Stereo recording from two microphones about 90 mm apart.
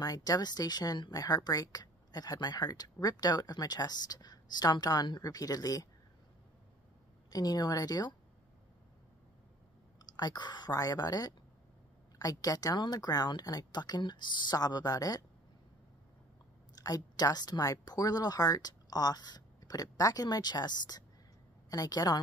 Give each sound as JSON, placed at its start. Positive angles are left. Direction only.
{"t": 0.0, "sound": "speech", "side_deg": 45}
{"t": 7.2, "sound": "speech", "side_deg": 45}
{"t": 10.1, "sound": "speech", "side_deg": 50}
{"t": 10.7, "sound": "speech", "side_deg": 40}
{"t": 16.7, "sound": "speech", "side_deg": 45}